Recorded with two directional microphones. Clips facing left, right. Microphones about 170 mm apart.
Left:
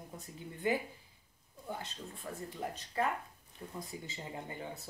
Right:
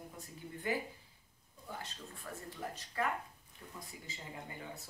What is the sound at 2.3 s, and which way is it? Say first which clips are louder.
Speech: left 3 dB; 20° left (ahead or behind).